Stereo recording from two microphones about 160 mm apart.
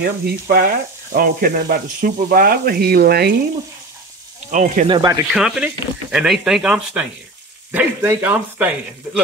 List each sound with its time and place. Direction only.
0.0 s sizzle: 65° right (ahead or behind)
4.5 s speech: 55° right (ahead or behind)
4.8 s speech: 25° right (ahead or behind)
5.3 s speech: 5° right (ahead or behind)